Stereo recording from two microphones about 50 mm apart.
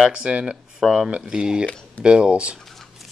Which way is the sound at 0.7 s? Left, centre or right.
Centre.